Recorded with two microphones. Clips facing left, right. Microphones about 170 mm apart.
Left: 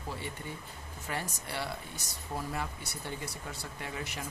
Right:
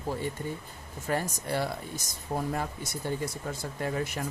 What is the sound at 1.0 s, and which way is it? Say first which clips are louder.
Speech: right 8 dB; 45° right (ahead or behind).